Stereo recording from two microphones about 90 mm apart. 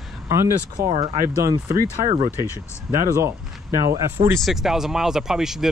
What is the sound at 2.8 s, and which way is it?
Speech, 35° right (ahead or behind).